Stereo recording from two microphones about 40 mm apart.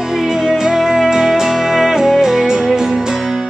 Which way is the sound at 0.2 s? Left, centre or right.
Centre.